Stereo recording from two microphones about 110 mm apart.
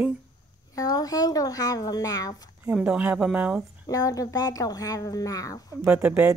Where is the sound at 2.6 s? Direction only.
15° right (ahead or behind).